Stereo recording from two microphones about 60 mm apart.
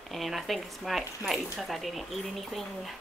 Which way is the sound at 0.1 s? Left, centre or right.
Centre.